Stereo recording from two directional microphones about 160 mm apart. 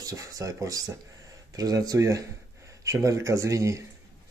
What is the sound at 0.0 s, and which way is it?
Speech, 20° right (ahead or behind).